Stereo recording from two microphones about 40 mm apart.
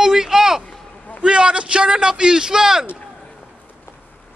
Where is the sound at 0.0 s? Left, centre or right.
Centre.